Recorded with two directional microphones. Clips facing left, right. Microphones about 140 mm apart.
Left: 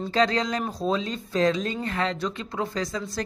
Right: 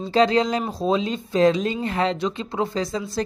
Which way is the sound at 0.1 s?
30° right (ahead or behind).